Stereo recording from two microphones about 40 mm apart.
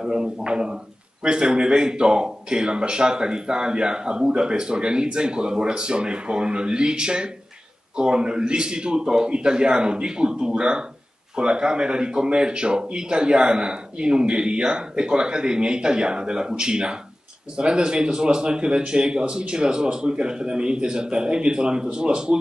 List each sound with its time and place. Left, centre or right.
0.0 s a man's voice: right